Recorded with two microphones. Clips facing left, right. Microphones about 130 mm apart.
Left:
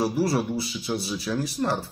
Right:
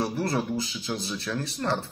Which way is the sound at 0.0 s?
10° left (ahead or behind).